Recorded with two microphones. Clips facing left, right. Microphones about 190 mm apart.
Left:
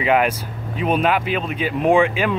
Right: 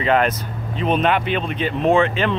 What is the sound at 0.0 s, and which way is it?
Speech, 10° left (ahead or behind).